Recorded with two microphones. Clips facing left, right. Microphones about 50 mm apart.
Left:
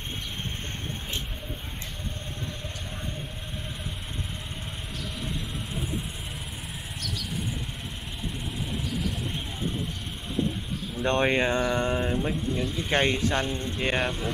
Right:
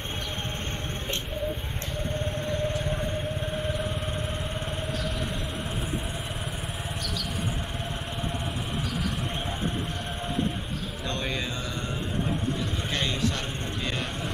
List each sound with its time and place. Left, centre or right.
11.1 s mantra: left
12.9 s speech: left